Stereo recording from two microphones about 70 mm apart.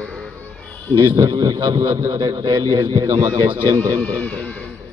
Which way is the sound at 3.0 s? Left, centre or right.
Right.